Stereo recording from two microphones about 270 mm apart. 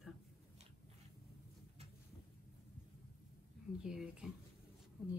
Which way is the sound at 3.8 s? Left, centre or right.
Centre.